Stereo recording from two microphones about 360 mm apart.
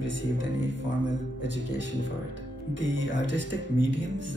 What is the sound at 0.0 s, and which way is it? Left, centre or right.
Speech, right.